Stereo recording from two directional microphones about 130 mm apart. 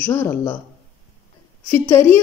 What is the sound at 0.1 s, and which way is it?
Speech, 20° left (ahead or behind).